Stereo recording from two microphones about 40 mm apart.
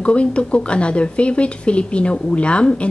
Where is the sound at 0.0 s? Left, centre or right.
Left.